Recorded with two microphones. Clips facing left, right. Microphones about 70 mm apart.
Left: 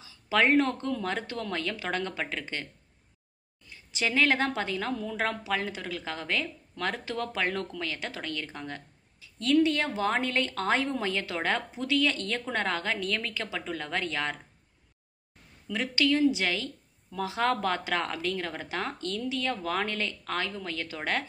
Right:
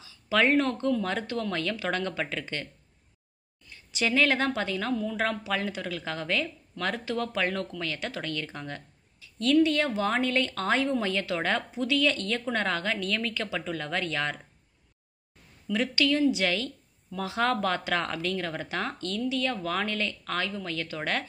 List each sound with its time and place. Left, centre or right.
0.3 s speech: left
3.9 s speech: left
15.7 s speech: left